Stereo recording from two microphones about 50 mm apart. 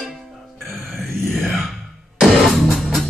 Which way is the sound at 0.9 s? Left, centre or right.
Centre.